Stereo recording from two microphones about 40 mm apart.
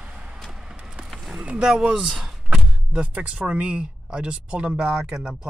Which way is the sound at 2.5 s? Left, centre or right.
Right.